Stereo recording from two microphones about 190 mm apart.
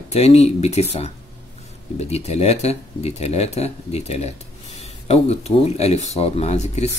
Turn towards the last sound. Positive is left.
turn(degrees=35)  # may be behind; listen again after turning